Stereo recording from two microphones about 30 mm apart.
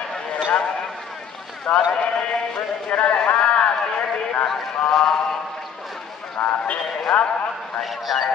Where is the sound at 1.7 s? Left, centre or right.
Left.